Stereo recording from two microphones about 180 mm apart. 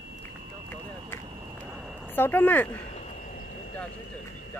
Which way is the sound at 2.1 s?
10° left (ahead or behind).